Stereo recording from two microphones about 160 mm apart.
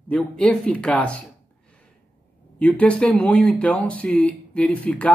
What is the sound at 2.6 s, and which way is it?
Speech, 5° left (ahead or behind).